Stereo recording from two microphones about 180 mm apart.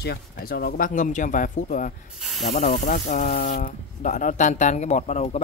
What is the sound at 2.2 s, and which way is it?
Snake, centre (ahead or behind).